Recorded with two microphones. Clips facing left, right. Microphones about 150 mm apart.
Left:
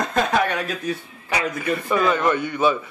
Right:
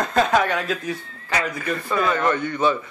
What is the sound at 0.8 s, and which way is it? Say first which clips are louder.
A man's voice: left 2 dB; 15° left (ahead or behind).